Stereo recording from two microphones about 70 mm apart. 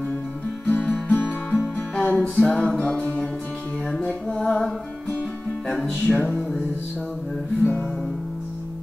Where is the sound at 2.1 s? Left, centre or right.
Centre.